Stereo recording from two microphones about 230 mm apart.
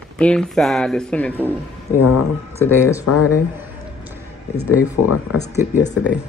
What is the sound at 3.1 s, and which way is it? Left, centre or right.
Speech, left.